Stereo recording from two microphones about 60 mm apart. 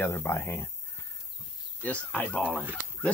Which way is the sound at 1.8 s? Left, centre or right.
Left.